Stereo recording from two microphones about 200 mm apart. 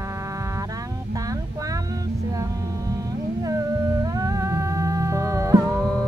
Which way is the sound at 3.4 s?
15° right (ahead or behind).